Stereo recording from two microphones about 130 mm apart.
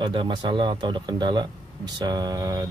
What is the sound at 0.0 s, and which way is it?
Speech, 35° right (ahead or behind).